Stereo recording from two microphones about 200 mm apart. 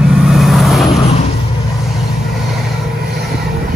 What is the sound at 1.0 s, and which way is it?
Vehicle, 30° left (ahead or behind).